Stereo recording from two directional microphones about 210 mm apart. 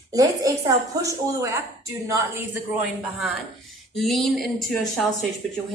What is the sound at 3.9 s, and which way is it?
Speech, centre (ahead or behind).